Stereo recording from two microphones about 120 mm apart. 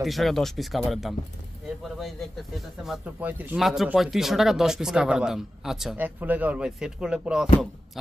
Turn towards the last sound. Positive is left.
turn(degrees=-5)  # may be behind; listen again after turning